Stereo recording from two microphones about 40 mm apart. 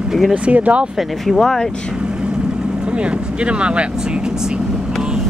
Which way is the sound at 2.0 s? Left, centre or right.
Right.